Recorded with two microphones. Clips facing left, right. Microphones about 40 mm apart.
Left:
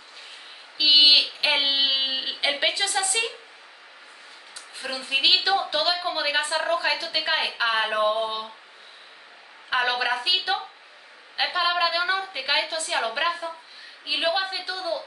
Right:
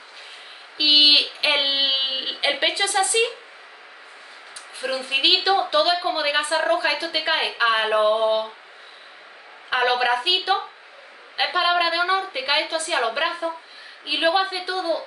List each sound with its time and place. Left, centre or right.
0.7 s a sound: centre
4.7 s a woman's voice: centre
9.7 s a woman's voice: centre